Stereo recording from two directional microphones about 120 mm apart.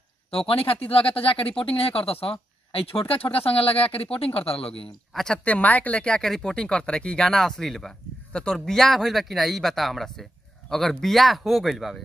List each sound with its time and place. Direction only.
0.3 s speech: 50° left (ahead or behind)
4.8 s speech: 5° left (ahead or behind)